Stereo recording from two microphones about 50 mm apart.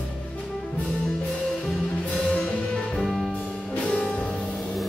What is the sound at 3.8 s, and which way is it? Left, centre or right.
Music, centre.